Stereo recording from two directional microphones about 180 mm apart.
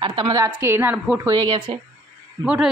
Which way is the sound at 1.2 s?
25° right (ahead or behind).